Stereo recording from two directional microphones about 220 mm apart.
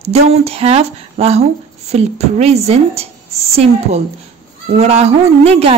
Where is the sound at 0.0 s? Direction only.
30° right (ahead or behind).